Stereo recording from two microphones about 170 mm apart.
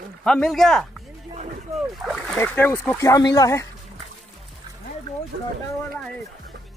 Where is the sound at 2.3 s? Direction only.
10° left (ahead or behind).